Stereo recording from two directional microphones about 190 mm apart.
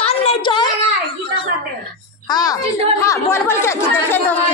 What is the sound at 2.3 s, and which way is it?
A woman's voice, 20° left (ahead or behind).